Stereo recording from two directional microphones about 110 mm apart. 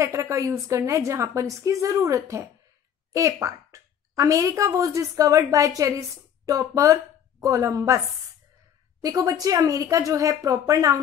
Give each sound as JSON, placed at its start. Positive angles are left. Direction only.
{"t": 0.0, "sound": "a woman's voice", "side_deg": -25}
{"t": 9.0, "sound": "speech", "side_deg": -35}